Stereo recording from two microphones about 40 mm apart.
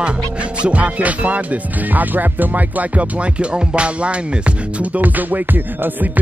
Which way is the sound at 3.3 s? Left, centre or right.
Right.